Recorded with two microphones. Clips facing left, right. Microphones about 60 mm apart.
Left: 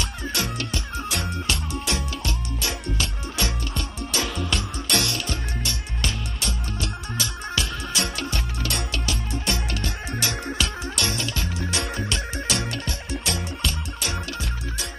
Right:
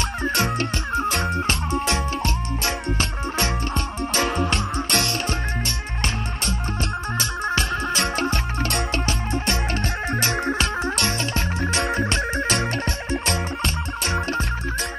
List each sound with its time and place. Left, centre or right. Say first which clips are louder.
0.2 s music: right 8 dB; right